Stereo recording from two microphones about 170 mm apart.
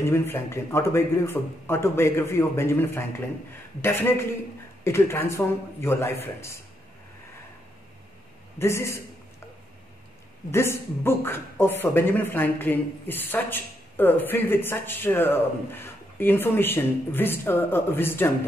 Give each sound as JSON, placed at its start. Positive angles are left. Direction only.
{"t": 0.0, "sound": "speech", "side_deg": 15}
{"t": 8.5, "sound": "speech", "side_deg": 15}
{"t": 10.5, "sound": "speech", "side_deg": 15}